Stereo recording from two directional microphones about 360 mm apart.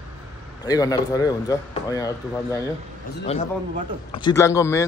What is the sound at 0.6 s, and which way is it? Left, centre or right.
Speech, centre.